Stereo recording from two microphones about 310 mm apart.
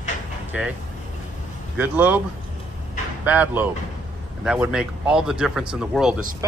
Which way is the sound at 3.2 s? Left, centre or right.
Centre.